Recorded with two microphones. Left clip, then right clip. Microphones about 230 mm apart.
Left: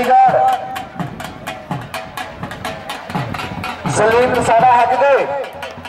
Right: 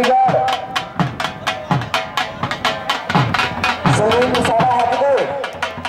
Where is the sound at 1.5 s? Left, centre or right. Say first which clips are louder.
Right 6 dB; centre.